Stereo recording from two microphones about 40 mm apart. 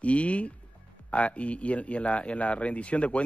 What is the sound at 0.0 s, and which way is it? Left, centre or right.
A man's voice, left.